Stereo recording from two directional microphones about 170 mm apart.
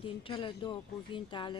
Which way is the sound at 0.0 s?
30° left (ahead or behind).